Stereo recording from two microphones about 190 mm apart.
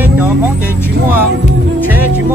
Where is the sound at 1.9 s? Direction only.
10° right (ahead or behind).